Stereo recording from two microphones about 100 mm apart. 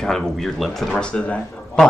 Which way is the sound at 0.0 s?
5° left (ahead or behind).